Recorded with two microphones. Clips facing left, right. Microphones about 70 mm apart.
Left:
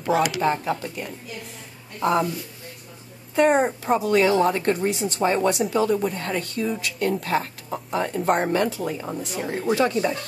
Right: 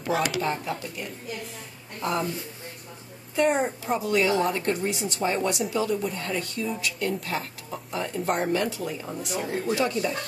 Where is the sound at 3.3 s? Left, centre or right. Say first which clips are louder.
Left 5 dB; left.